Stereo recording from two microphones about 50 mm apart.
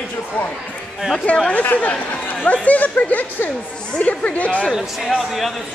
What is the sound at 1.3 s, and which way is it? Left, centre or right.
Speech, left.